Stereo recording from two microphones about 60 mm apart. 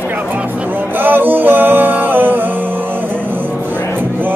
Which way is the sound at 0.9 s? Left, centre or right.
Right.